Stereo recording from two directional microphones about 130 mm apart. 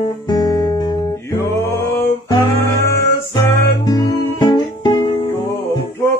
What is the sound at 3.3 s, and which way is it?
Music, 30° left (ahead or behind).